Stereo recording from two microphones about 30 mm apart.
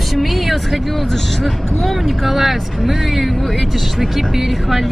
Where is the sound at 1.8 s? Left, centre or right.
Centre.